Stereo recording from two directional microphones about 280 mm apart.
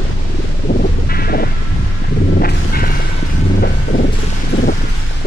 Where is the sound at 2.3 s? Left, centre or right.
Left.